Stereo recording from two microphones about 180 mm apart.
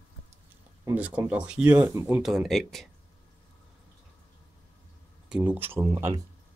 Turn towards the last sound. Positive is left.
turn(degrees=-15)  # may be behind; listen again after turning